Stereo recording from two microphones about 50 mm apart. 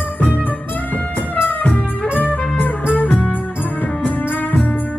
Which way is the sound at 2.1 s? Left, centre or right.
Left.